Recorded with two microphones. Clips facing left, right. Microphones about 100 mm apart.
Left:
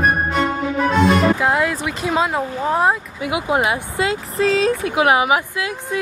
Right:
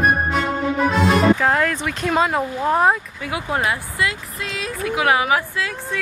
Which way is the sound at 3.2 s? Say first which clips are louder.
Left 4 dB; 15° left (ahead or behind).